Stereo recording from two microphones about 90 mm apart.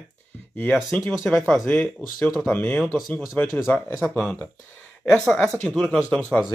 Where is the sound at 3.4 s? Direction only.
15° left (ahead or behind).